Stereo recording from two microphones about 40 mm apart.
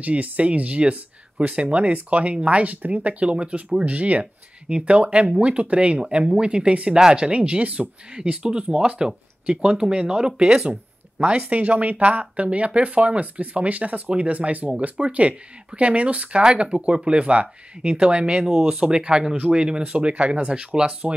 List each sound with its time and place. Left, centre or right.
0.0 s speech: right